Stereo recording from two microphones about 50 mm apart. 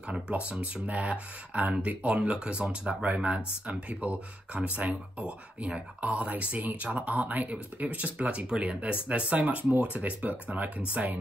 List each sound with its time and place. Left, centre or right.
0.1 s speech: right